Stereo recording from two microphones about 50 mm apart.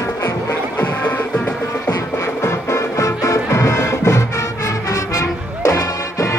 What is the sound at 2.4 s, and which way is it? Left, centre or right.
Music, left.